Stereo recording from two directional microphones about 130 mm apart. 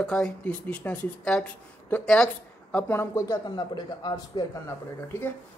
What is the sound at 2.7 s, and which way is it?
Speech, 20° left (ahead or behind).